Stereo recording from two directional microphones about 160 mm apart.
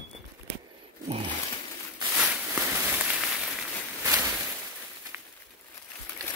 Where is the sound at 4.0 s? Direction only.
15° right (ahead or behind).